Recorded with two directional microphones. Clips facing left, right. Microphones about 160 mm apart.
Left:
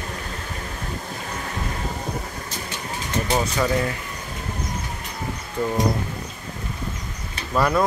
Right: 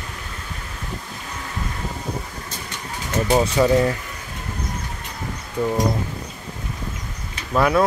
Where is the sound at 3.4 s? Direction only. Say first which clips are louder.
Right 7 dB; 25° right (ahead or behind).